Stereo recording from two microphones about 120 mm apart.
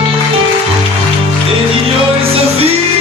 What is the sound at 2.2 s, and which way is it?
Music, 55° right (ahead or behind).